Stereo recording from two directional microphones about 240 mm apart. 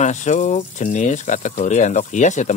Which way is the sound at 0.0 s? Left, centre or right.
Left.